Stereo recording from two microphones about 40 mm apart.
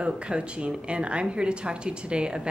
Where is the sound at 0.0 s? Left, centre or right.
Right.